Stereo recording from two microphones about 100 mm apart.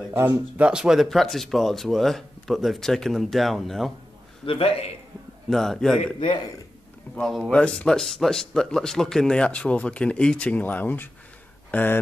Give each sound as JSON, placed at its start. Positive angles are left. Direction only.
{"t": 0.1, "sound": "speech", "side_deg": -20}
{"t": 0.7, "sound": "speech", "side_deg": -5}
{"t": 4.5, "sound": "a man's voice", "side_deg": 75}
{"t": 5.5, "sound": "speech", "side_deg": 5}
{"t": 7.2, "sound": "speech", "side_deg": 0}
{"t": 7.5, "sound": "speech", "side_deg": 10}